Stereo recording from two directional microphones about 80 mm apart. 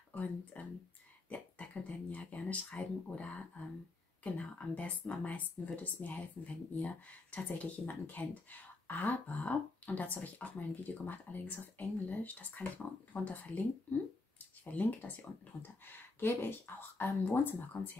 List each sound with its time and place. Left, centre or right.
0.1 s a woman's voice: centre
14.6 s speech: centre